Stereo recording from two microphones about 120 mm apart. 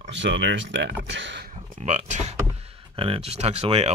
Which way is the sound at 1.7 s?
75° right (ahead or behind).